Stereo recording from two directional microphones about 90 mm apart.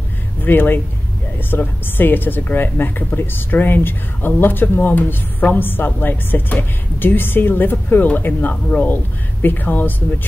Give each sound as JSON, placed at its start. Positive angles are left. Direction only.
{"t": 0.5, "sound": "a woman's voice", "side_deg": 20}